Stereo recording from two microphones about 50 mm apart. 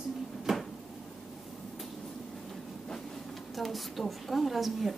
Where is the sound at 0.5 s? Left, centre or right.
Centre.